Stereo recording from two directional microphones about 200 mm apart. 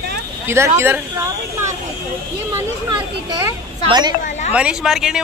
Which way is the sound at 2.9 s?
20° right (ahead or behind).